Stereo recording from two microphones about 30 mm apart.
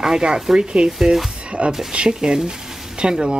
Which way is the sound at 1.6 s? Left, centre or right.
Right.